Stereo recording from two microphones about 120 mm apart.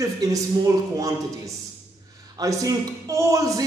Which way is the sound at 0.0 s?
30° right (ahead or behind).